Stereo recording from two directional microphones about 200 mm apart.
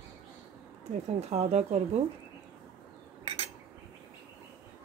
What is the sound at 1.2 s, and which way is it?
Speech, 30° right (ahead or behind).